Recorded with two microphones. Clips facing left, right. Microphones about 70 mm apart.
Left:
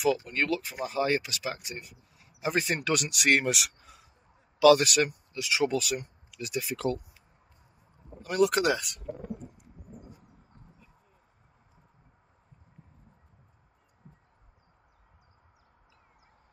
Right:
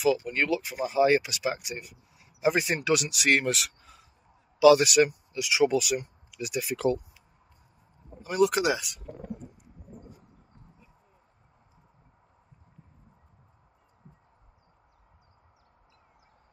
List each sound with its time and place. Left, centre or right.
0.2 s speech: centre
2.6 s speech: centre; by 7.0 s right
8.2 s speech: centre